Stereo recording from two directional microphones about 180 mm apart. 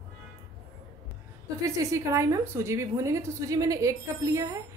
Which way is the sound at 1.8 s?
15° right (ahead or behind).